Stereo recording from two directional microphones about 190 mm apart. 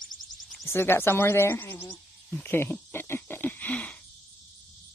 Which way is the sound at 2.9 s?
10° left (ahead or behind).